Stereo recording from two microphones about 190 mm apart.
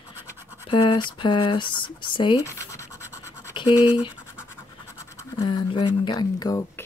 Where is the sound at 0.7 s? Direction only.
25° left (ahead or behind).